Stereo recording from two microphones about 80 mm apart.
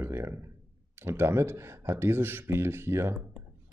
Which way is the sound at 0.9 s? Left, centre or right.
Right.